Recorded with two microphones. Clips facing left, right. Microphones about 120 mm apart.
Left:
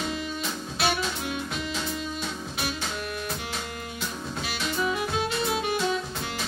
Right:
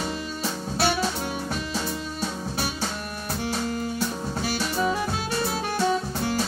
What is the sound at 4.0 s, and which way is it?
Music, 35° right (ahead or behind).